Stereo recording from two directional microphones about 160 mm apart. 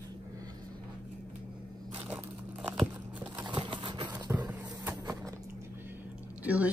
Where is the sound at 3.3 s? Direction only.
30° right (ahead or behind).